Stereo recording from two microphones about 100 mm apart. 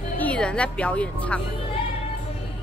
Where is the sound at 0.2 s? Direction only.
10° left (ahead or behind).